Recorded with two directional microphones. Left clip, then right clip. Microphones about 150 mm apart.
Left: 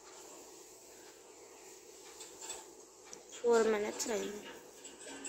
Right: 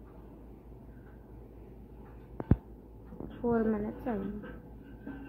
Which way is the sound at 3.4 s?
20° left (ahead or behind).